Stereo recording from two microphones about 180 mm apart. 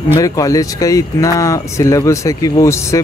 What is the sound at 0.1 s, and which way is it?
Speech, 20° left (ahead or behind).